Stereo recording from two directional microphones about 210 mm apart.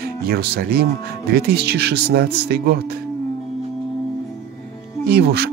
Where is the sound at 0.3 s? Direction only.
45° right (ahead or behind).